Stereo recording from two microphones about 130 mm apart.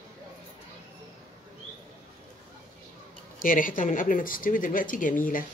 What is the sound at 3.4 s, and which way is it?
Speech, 90° left.